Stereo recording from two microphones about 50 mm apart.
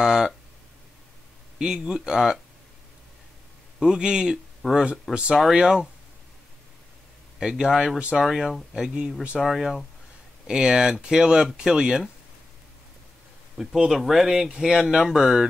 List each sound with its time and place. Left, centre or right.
0.0 s speech: centre
1.6 s speech: centre
3.8 s speech: centre
4.6 s speech: centre
5.1 s speech: right
7.3 s speech: centre
13.7 s speech: centre